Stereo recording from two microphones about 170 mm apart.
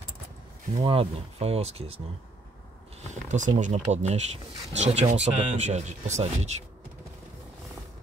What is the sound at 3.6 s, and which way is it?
Speech, 45° right (ahead or behind).